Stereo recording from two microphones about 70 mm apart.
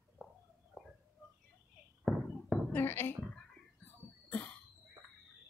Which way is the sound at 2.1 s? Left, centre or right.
Centre.